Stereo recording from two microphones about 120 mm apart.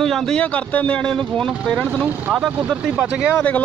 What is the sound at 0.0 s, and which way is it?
Speech, 5° left (ahead or behind).